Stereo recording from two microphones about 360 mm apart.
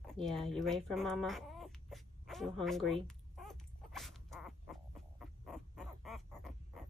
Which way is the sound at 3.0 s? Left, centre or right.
Centre.